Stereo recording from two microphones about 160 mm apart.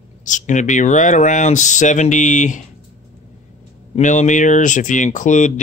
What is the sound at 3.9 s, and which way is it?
Speech, 50° left (ahead or behind).